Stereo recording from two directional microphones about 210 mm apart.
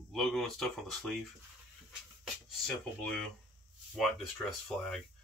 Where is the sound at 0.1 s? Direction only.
Centre (ahead or behind).